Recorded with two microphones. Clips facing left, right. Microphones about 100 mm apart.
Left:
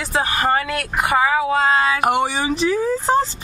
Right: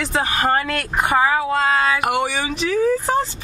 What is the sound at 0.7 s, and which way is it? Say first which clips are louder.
Speech: even; 5° left (ahead or behind).